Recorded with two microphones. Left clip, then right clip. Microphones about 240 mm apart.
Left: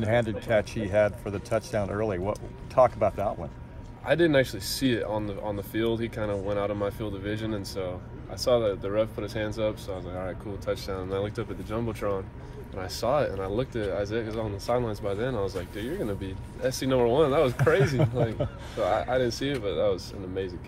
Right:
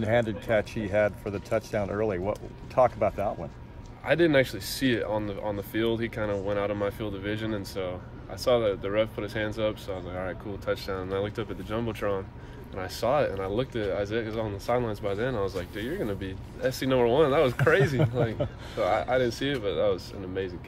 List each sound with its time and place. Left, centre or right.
0.0 s speech: left
4.0 s speech: centre